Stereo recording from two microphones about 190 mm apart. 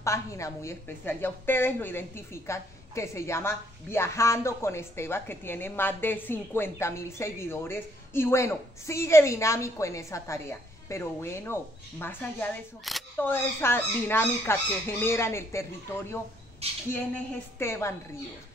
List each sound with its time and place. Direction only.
0.0 s a woman's voice: 15° left (ahead or behind)
12.9 s speech: centre (ahead or behind)
13.2 s a woman's voice: 10° left (ahead or behind)
16.6 s speech: 30° right (ahead or behind)
17.6 s a woman's voice: 15° left (ahead or behind)